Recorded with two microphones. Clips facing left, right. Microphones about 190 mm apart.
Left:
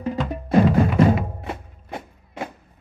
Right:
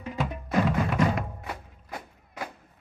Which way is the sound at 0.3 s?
35° left (ahead or behind).